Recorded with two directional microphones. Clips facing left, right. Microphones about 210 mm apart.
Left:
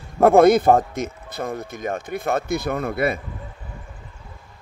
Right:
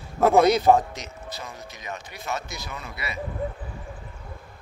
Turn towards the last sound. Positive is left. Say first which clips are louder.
# left 14 dB
turn(degrees=55)  # may be behind; listen again after turning